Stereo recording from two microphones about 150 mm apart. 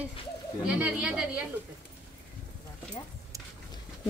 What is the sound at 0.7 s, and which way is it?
Speech, 10° right (ahead or behind).